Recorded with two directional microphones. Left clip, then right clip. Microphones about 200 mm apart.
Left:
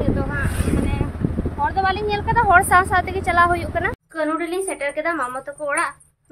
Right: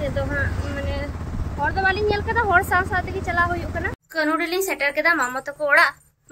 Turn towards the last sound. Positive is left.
turn(degrees=0)  # may be behind; listen again after turning